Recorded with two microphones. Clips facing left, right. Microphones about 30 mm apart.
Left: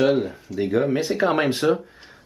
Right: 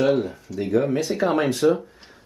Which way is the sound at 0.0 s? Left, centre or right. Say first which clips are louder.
Left 1 dB; centre.